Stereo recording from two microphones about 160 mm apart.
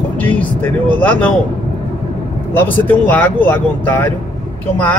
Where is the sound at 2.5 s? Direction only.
10° left (ahead or behind).